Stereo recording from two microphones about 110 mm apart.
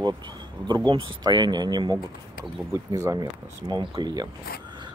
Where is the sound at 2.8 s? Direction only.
25° right (ahead or behind).